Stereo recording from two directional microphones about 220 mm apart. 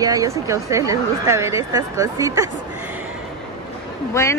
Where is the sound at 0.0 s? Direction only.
15° right (ahead or behind).